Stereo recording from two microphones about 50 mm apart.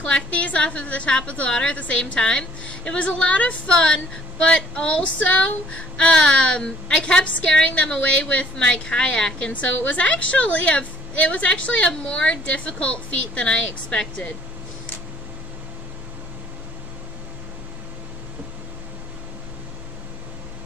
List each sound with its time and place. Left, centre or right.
0.0 s a woman's voice: left
3.7 s a woman's voice: centre
5.9 s a woman's voice: centre
9.5 s a woman's voice: left